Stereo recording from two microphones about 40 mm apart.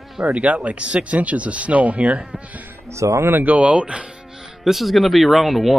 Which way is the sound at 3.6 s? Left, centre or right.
Right.